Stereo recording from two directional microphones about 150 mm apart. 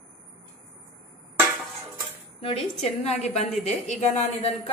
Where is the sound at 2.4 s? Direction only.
40° left (ahead or behind).